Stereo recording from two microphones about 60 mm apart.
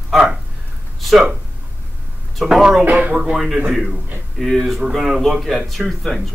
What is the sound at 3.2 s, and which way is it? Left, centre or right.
Speech, centre.